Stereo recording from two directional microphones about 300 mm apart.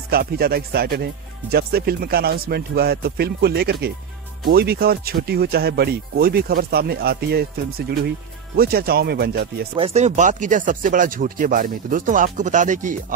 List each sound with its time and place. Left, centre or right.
0.1 s speech: right
9.8 s speech: right